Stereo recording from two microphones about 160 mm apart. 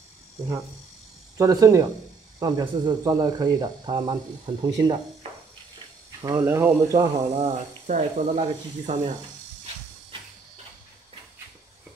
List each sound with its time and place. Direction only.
1.4 s speech: 20° right (ahead or behind)
6.2 s speech: 15° right (ahead or behind)
7.3 s speech: 45° right (ahead or behind)